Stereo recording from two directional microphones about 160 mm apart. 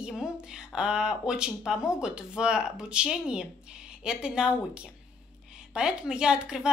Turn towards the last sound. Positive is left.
turn(degrees=-5)  # may be behind; listen again after turning